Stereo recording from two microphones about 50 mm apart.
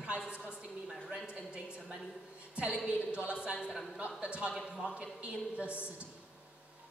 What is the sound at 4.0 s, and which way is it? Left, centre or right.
A man's voice, right.